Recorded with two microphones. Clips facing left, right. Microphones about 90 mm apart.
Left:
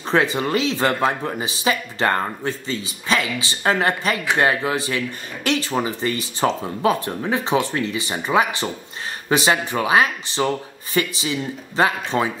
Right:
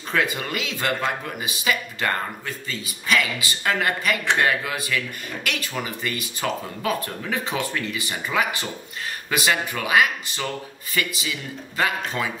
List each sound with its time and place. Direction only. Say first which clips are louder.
0.1 s speech: left 5 dB; 30° left (ahead or behind)